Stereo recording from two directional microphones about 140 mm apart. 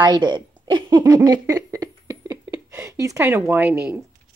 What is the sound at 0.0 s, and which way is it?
Speech, 30° right (ahead or behind).